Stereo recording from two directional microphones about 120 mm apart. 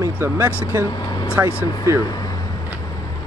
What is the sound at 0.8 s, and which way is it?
Vehicle, 35° left (ahead or behind).